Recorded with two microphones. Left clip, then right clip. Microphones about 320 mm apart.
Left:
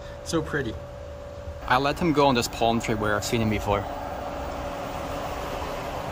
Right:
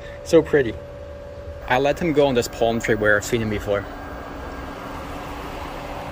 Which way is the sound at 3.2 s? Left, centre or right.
Centre.